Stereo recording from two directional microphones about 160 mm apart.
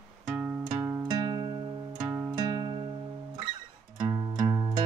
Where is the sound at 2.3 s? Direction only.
25° right (ahead or behind).